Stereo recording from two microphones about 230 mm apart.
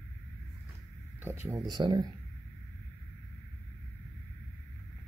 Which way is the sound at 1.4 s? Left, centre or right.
Centre.